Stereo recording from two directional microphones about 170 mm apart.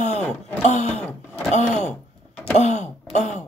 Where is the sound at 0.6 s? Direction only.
40° left (ahead or behind).